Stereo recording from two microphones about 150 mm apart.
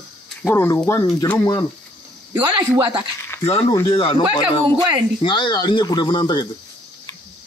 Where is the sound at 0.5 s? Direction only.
20° left (ahead or behind).